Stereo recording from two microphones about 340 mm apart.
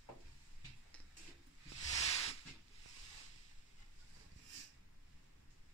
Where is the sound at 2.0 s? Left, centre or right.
Centre.